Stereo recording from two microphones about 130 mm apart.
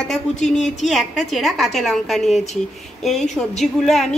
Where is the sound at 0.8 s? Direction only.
Centre (ahead or behind).